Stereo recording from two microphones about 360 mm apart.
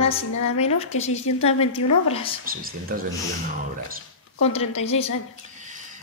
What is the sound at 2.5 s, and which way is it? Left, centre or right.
Speech, right.